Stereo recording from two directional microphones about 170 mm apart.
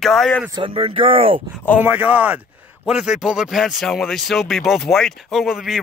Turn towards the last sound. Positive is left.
turn(degrees=0)  # may be behind; listen again after turning